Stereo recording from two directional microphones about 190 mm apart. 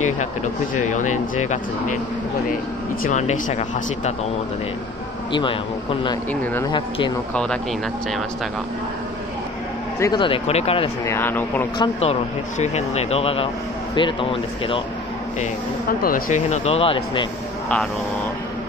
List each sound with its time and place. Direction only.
0.7 s speech: 40° left (ahead or behind)
3.0 s speech: 40° left (ahead or behind)
5.3 s speech: 25° left (ahead or behind)
9.9 s speech: 20° left (ahead or behind)
11.1 s speech: 10° left (ahead or behind)
11.8 s speech: 30° left (ahead or behind)
16.0 s speech: 45° left (ahead or behind); by 17.3 s 25° left (ahead or behind)